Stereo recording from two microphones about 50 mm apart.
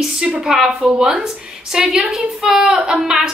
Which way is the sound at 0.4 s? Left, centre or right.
Centre.